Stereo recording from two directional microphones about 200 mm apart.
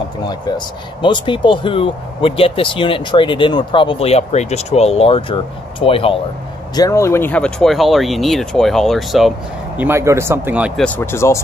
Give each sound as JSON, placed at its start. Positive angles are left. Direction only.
{"t": 1.0, "sound": "speech", "side_deg": 25}
{"t": 6.7, "sound": "speech", "side_deg": 15}
{"t": 9.8, "sound": "speech", "side_deg": -10}
{"t": 10.8, "sound": "speech", "side_deg": 10}